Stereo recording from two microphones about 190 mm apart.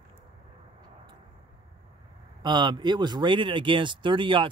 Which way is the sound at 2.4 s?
25° right (ahead or behind).